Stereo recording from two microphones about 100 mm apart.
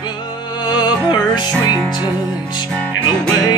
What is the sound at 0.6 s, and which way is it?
Music, 45° left (ahead or behind).